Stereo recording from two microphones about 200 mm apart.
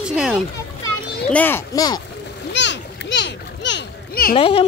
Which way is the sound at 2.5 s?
60° left (ahead or behind).